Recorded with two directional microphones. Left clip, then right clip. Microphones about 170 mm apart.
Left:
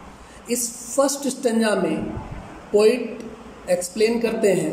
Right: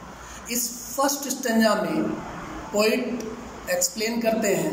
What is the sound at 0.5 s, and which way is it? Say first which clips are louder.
A woman's voice: left 4 dB; 35° left (ahead or behind).